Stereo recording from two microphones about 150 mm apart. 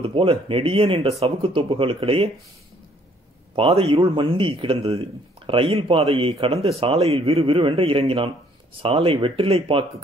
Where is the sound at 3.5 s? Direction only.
40° right (ahead or behind).